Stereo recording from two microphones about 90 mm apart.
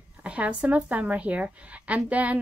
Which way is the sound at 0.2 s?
15° right (ahead or behind).